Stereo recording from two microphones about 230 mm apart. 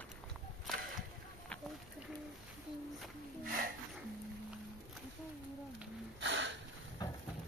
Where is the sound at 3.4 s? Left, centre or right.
Right.